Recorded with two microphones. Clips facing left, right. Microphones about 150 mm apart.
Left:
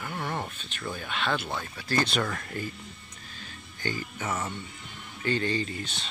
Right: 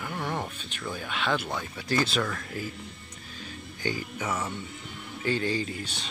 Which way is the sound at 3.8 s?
10° right (ahead or behind).